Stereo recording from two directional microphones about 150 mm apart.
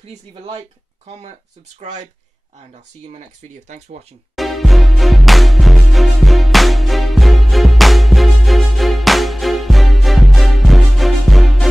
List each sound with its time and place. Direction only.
0.0 s speech: 40° right (ahead or behind)
4.4 s music: centre (ahead or behind)